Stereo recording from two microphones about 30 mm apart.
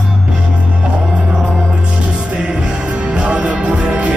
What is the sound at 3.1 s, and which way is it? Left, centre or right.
Music, right.